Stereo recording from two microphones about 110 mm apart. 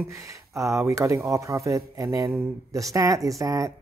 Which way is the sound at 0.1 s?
30° right (ahead or behind).